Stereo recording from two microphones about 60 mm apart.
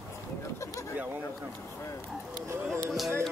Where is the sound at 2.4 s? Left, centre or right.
Right.